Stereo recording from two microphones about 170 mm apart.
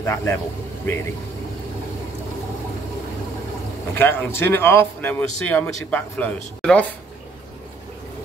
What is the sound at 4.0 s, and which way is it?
Speech, 10° left (ahead or behind).